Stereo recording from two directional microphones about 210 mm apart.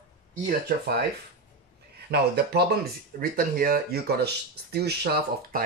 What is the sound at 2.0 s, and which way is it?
Speech, 50° right (ahead or behind).